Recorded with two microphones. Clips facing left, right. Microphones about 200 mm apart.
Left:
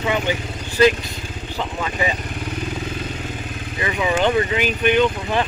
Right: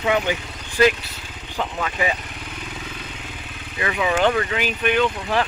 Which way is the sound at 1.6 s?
Centre (ahead or behind).